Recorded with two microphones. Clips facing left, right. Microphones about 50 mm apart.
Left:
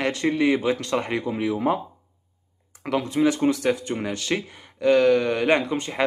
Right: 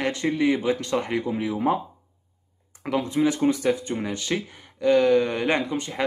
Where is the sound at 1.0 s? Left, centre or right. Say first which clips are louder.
Even; centre.